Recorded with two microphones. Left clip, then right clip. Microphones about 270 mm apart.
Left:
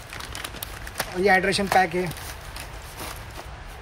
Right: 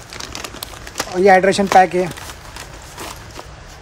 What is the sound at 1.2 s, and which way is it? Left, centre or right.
Speech, right.